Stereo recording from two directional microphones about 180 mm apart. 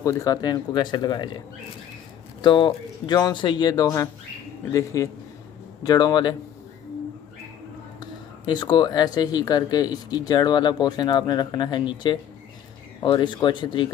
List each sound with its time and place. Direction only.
0.0 s speech: 20° left (ahead or behind)
2.4 s speech: 25° left (ahead or behind)
8.0 s speech: 25° left (ahead or behind)